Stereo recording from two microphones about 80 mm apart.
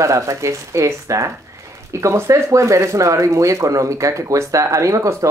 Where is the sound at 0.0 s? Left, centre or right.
Right.